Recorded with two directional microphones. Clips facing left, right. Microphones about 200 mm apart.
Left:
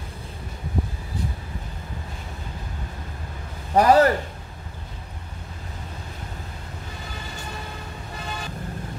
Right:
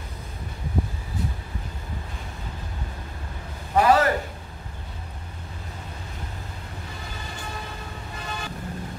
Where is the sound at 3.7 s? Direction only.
40° left (ahead or behind).